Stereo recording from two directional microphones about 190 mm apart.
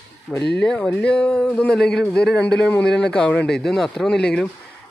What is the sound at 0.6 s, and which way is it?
Speech, 5° left (ahead or behind).